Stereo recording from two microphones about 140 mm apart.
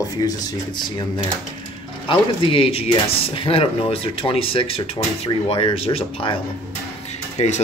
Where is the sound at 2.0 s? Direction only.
40° left (ahead or behind).